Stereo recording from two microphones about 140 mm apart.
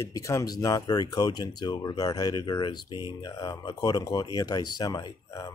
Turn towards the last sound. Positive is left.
turn(degrees=25)  # may be behind; listen again after turning